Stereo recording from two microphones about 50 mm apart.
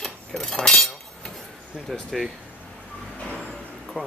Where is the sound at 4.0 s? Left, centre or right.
Centre.